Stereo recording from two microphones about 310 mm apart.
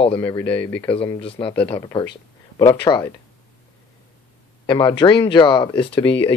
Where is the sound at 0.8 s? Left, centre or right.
Centre.